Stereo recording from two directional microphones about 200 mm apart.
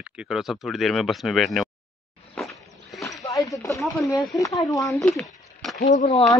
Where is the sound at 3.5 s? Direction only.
15° left (ahead or behind).